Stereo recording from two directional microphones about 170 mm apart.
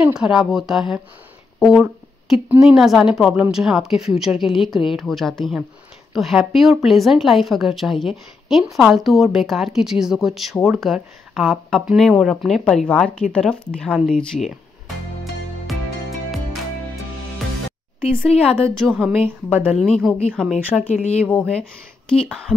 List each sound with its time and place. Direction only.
0.2 s speech: 5° right (ahead or behind)
18.6 s speech: 5° left (ahead or behind)
19.0 s a woman's voice: 10° right (ahead or behind)
19.8 s speech: centre (ahead or behind)
20.9 s speech: 40° left (ahead or behind)
21.3 s speech: 5° left (ahead or behind)